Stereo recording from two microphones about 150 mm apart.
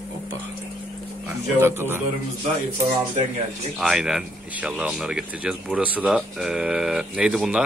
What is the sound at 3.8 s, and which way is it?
Speech, 5° right (ahead or behind).